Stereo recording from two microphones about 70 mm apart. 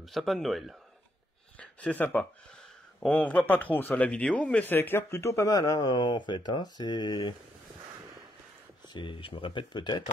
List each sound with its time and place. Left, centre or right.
0.0 s a man's voice: centre
1.6 s a sound: centre
3.1 s speech: left
4.6 s speech: left
5.5 s speech: left
9.6 s speech: left